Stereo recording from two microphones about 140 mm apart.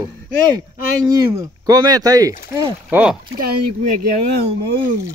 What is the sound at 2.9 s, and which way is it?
Speech, 5° right (ahead or behind).